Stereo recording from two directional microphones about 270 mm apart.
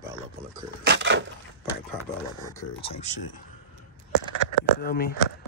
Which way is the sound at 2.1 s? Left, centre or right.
Left.